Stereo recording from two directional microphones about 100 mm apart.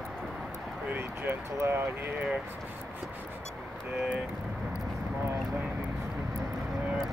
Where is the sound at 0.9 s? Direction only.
25° right (ahead or behind).